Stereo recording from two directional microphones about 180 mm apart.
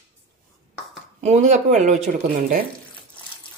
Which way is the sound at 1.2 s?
40° right (ahead or behind).